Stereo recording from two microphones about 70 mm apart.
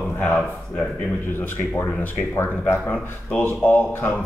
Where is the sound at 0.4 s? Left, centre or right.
Centre.